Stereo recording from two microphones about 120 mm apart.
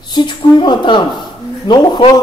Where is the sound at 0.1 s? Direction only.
40° left (ahead or behind).